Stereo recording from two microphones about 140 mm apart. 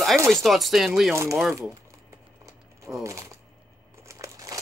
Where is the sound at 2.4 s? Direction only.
20° right (ahead or behind).